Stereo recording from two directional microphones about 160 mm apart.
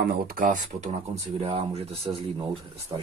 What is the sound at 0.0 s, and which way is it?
Speech, 70° right (ahead or behind).